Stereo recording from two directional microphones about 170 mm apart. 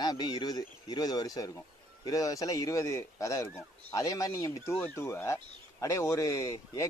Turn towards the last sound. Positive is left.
turn(degrees=20)  # may be behind; listen again after turning